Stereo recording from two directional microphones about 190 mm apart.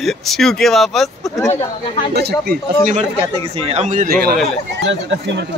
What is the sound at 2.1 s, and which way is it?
Speech, 55° right (ahead or behind).